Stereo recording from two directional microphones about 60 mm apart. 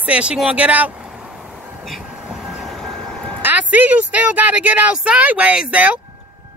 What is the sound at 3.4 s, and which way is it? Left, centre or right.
A woman's voice, right.